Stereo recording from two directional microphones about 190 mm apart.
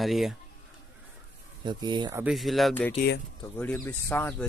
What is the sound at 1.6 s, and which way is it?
Speech, 25° right (ahead or behind).